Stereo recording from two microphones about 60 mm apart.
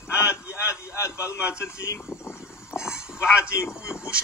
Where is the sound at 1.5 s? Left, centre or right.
Left.